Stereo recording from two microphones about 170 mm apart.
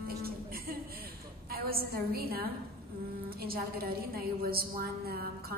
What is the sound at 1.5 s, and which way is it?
A woman's voice, 65° right (ahead or behind).